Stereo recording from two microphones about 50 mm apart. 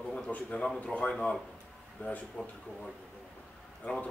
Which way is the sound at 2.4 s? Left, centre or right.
Left.